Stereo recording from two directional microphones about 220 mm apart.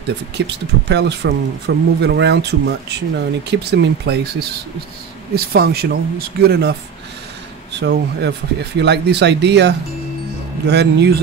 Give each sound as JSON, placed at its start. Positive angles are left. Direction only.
{"t": 0.4, "sound": "speech", "side_deg": -50}
{"t": 7.8, "sound": "speech", "side_deg": -50}